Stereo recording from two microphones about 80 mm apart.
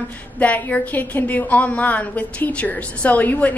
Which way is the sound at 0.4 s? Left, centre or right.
Centre.